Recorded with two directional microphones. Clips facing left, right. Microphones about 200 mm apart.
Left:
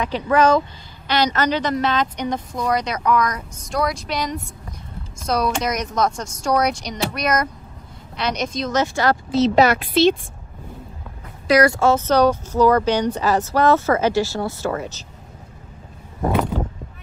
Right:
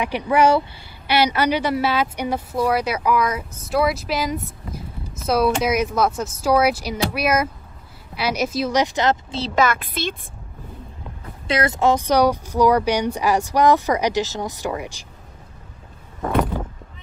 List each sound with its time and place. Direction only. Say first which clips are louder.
0.0 s a woman's voice: even; 10° right (ahead or behind)
9.6 s a woman's voice: left 3 dB; 50° right (ahead or behind)
11.4 s a woman's voice: left 4 dB; 25° right (ahead or behind)
16.5 s a sound: left 3 dB; 10° right (ahead or behind)